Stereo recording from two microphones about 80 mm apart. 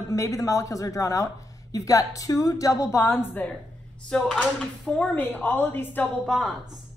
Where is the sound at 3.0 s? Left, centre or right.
Left.